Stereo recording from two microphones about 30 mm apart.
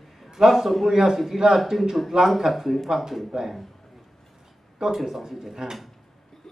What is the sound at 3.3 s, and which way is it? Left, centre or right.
Speech, right.